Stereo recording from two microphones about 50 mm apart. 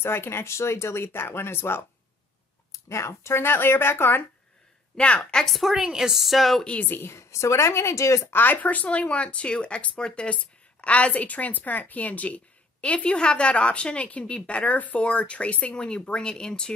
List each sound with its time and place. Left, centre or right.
0.0 s speech: left
2.7 s speech: left
4.9 s speech: left
5.4 s speech: centre
5.8 s speech: centre
6.6 s speech: left
6.9 s a woman's voice: left
8.3 s speech: left
8.6 s a woman's voice: left